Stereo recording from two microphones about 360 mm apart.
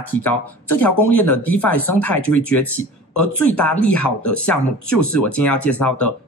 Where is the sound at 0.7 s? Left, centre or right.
Centre.